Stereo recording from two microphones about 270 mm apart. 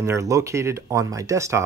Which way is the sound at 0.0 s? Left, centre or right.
Centre.